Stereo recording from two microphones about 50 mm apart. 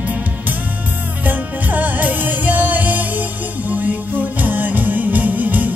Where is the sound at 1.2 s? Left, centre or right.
Right.